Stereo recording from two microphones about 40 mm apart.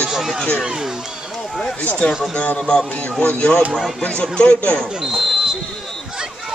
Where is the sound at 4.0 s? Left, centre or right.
Left.